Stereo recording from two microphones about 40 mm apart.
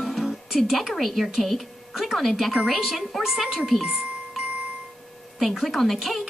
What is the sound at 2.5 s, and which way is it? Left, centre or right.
Speech, centre.